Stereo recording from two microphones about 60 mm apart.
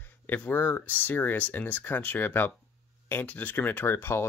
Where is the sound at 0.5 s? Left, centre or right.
Left.